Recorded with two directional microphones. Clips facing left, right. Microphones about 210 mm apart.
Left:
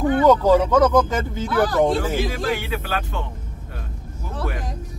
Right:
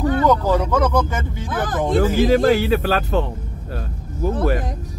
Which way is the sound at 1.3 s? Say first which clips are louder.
Left 7 dB; 20° right (ahead or behind).